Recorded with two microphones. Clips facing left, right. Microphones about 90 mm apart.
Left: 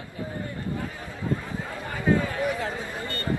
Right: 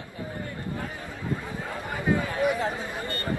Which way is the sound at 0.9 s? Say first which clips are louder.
Left 2 dB; 15° right (ahead or behind).